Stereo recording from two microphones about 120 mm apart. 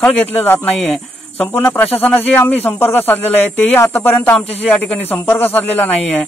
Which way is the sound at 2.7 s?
15° left (ahead or behind).